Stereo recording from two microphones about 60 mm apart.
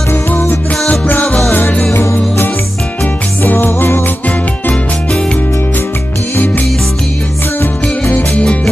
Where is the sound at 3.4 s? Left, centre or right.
Left.